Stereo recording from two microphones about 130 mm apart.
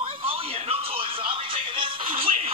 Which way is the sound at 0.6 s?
45° right (ahead or behind).